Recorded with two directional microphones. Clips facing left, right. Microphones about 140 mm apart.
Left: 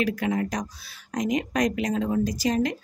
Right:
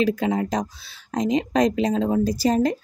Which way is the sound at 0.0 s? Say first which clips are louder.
Right 4 dB; 25° right (ahead or behind).